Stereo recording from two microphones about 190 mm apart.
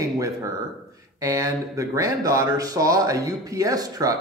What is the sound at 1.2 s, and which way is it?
Speech, 15° right (ahead or behind).